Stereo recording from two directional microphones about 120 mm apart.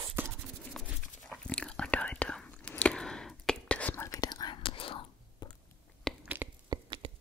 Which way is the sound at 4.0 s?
30° left (ahead or behind).